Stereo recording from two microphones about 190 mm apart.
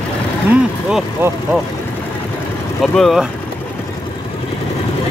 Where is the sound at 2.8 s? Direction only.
Centre (ahead or behind).